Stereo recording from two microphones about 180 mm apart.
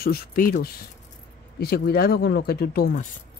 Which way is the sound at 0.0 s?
55° left (ahead or behind).